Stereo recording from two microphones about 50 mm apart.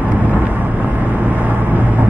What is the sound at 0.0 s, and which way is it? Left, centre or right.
Vehicle, right.